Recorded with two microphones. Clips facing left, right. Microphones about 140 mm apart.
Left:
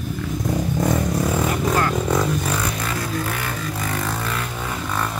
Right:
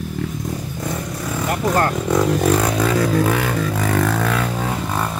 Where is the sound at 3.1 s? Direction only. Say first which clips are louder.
Right 8 dB; 80° right.